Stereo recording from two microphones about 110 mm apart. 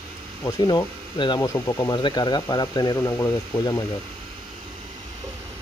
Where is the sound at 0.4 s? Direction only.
35° left (ahead or behind).